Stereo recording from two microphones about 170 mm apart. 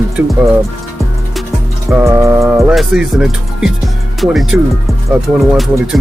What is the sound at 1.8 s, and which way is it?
Music, 15° right (ahead or behind).